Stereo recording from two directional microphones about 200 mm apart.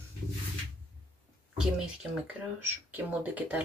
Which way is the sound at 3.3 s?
10° right (ahead or behind).